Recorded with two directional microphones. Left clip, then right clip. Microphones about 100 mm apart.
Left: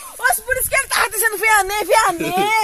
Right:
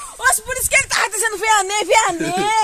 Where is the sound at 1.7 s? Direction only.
15° right (ahead or behind).